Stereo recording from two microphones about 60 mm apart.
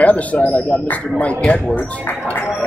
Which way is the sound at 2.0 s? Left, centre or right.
Left.